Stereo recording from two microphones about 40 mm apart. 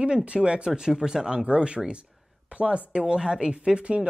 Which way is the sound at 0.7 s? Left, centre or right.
Centre.